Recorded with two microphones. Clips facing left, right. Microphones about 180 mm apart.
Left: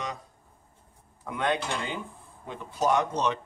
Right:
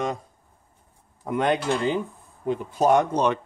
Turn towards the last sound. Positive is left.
turn(degrees=-50)  # may be behind; listen again after turning